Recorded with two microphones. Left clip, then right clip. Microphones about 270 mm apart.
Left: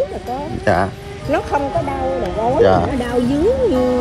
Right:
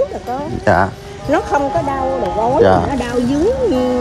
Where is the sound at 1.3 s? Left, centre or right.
Right.